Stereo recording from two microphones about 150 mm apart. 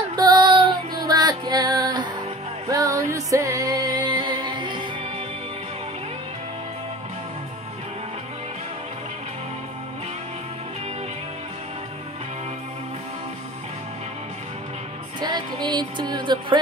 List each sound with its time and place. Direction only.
0.1 s female singing: 30° right (ahead or behind)
2.7 s music: 20° right (ahead or behind)
15.1 s a sound: 30° right (ahead or behind)